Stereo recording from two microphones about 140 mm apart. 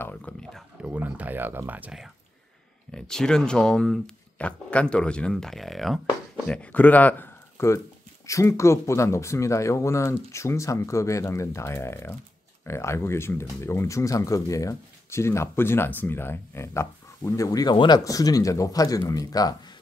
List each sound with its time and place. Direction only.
0.0 s a sound: 10° left (ahead or behind)
0.9 s speech: 10° right (ahead or behind)
2.9 s speech: 5° left (ahead or behind); by 19.5 s 25° left (ahead or behind)